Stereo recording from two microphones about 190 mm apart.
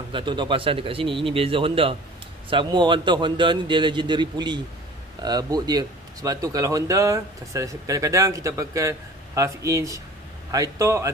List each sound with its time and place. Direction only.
0.1 s speech: 25° right (ahead or behind)